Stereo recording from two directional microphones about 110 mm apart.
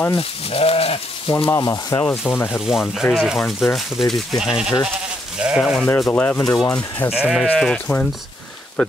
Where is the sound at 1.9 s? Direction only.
35° left (ahead or behind).